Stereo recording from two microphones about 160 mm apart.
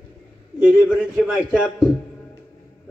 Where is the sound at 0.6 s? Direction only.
5° right (ahead or behind).